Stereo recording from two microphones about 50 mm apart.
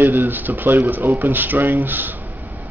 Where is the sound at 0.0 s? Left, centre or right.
Right.